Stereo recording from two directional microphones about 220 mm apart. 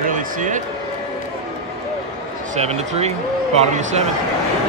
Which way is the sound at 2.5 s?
30° right (ahead or behind).